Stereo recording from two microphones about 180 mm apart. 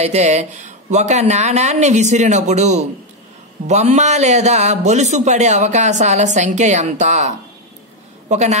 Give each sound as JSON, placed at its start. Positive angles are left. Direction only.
{"t": 0.0, "sound": "a man's voice", "side_deg": -40}